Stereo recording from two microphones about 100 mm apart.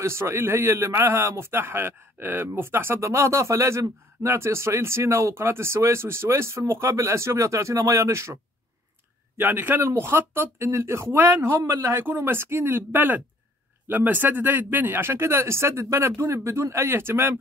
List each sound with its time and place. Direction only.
0.0 s speech: 25° right (ahead or behind)
9.4 s speech: 20° right (ahead or behind)